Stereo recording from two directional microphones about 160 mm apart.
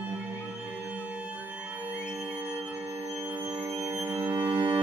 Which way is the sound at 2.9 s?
40° right (ahead or behind).